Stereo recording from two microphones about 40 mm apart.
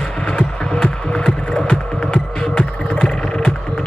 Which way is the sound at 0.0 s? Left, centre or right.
Left.